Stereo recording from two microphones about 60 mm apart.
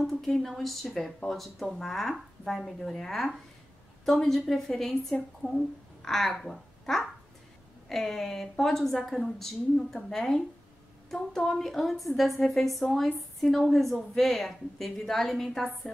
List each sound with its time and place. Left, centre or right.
0.0 s a woman's voice: centre
5.4 s speech: left
6.0 s speech: centre